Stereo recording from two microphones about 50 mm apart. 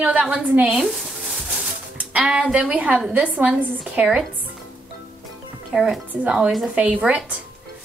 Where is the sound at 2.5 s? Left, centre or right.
Right.